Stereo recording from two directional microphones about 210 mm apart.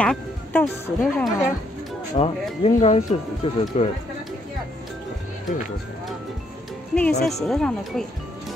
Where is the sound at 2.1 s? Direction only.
30° left (ahead or behind).